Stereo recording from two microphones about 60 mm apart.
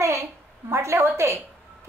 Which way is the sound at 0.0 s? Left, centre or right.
Right.